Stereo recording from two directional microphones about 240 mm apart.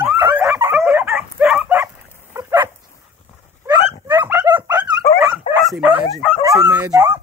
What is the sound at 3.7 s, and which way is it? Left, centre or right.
Dog, centre.